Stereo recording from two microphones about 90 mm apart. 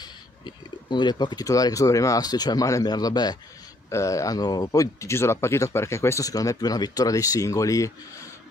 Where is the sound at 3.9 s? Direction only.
35° left (ahead or behind).